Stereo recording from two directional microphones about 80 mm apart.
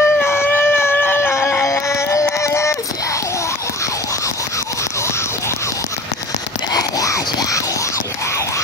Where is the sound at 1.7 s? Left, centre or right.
Left.